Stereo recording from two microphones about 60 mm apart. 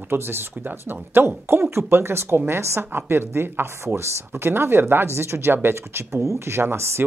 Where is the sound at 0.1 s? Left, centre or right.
Right.